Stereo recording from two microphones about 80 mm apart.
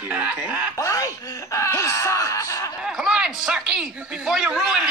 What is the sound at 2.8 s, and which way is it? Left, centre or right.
A man's voice, centre.